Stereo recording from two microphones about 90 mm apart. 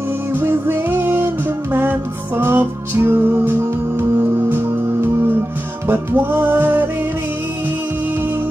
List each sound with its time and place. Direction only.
0.3 s music: 25° right (ahead or behind)